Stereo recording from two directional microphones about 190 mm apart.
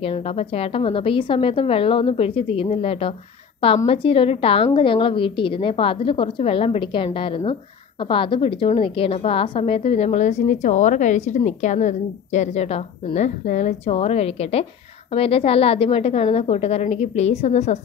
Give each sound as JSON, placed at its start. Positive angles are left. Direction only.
{"t": 0.0, "sound": "a woman's voice", "side_deg": 30}